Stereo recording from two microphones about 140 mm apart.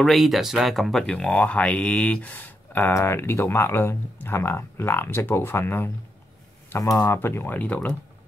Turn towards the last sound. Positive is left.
turn(degrees=10)  # may be behind; listen again after turning